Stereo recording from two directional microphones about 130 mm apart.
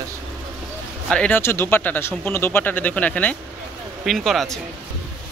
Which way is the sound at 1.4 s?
20° left (ahead or behind).